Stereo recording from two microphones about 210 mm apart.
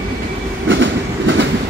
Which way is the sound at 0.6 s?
65° right (ahead or behind).